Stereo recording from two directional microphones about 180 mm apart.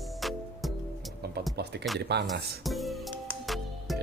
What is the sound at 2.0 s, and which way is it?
Speech, 70° right (ahead or behind).